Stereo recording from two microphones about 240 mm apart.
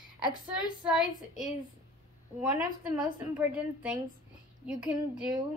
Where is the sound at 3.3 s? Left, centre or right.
Centre.